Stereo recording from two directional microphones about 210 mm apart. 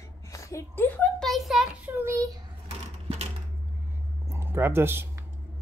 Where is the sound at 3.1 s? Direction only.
30° right (ahead or behind).